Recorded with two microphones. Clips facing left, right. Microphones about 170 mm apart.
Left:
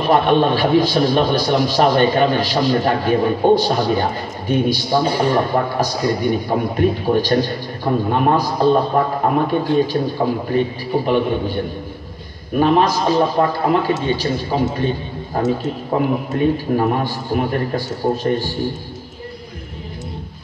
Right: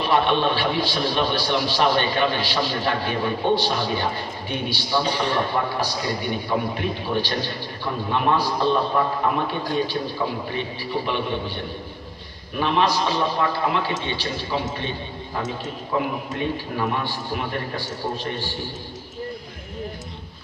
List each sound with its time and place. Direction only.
0.0 s a man's voice: 45° left (ahead or behind)
12.5 s a man's voice: 45° left (ahead or behind)